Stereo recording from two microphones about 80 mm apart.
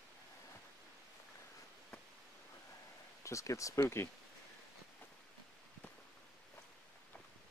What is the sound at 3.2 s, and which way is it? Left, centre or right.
Speech, left.